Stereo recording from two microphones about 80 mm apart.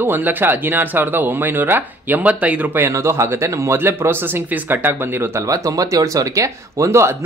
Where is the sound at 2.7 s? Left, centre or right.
Right.